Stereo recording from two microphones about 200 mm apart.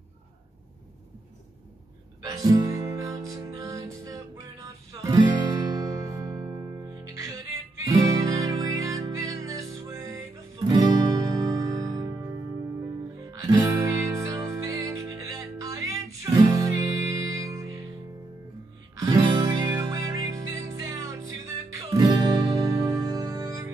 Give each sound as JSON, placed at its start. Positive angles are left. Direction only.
{"t": 2.2, "sound": "music", "side_deg": -20}
{"t": 13.3, "sound": "music", "side_deg": -15}
{"t": 18.9, "sound": "music", "side_deg": -20}